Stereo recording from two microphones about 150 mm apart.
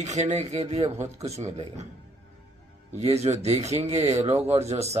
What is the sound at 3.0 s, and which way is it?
Speech, 45° right (ahead or behind).